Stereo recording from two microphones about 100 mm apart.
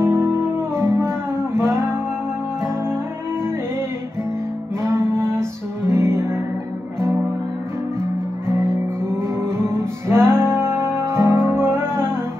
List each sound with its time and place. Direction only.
0.0 s music: 25° right (ahead or behind)
4.8 s music: 25° right (ahead or behind)
9.2 s music: 25° right (ahead or behind)